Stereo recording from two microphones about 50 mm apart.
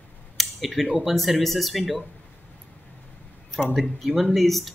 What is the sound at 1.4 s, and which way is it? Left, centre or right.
Speech, centre.